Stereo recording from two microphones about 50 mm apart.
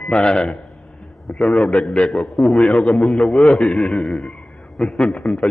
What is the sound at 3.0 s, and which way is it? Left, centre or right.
A man's voice, centre.